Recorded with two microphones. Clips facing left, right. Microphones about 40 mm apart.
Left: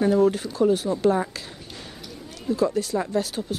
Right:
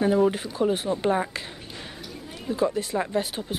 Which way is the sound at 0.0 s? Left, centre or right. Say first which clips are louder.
Left 2 dB; centre.